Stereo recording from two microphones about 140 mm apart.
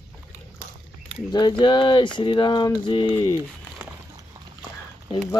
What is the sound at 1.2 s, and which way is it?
Speech, 30° left (ahead or behind).